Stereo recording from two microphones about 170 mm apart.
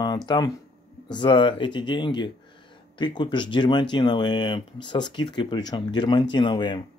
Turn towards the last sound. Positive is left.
turn(degrees=25)  # may be behind; listen again after turning